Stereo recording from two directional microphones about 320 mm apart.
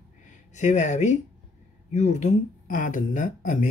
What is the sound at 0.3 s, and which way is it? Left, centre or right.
Speech, left.